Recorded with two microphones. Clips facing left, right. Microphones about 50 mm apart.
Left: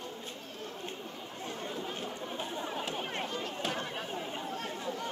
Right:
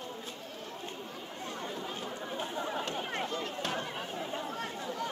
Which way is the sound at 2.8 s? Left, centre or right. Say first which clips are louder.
Right 1 dB; centre.